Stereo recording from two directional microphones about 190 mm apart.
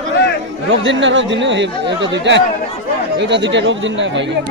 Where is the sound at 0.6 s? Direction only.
85° right.